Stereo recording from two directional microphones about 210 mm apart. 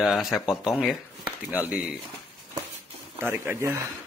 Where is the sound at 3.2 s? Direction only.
10° right (ahead or behind).